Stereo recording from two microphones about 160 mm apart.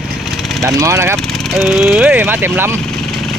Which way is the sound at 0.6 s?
20° right (ahead or behind).